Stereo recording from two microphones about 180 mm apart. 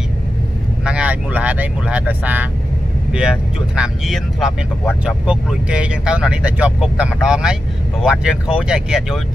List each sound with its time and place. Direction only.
0.8 s speech: 5° right (ahead or behind)